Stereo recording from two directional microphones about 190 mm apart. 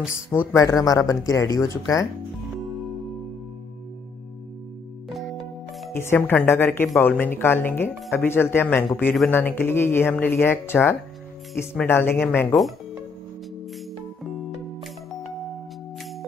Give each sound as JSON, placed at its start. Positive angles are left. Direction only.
{"t": 0.3, "sound": "speech", "side_deg": 15}
{"t": 5.9, "sound": "speech", "side_deg": 10}